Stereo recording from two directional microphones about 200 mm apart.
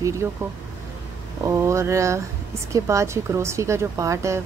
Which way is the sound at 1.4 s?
15° right (ahead or behind).